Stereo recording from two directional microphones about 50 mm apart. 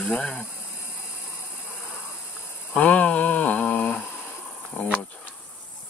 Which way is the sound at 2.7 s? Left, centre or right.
Left.